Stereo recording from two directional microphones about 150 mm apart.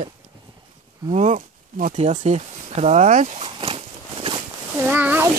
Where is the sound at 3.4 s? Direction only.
35° right (ahead or behind).